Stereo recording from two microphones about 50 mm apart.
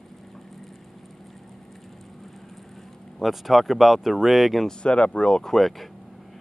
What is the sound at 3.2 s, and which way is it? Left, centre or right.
Speech, centre.